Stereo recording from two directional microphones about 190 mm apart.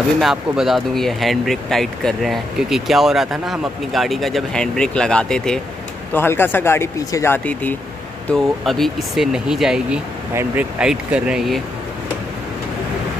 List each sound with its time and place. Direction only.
0.2 s speech: centre (ahead or behind)